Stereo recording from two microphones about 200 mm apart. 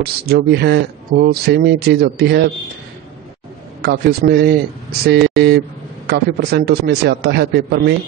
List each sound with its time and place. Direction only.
0.0 s a man's voice: 55° right (ahead or behind)
3.8 s a man's voice: 55° right (ahead or behind)